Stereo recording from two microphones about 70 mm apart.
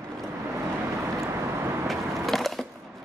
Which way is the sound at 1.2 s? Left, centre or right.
Right.